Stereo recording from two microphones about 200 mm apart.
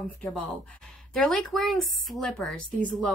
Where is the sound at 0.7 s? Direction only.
5° left (ahead or behind).